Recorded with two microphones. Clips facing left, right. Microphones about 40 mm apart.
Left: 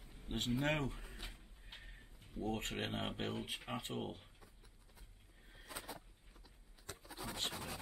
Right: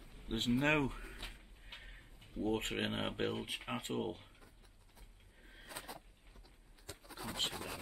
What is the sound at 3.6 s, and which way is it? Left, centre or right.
Speech, right.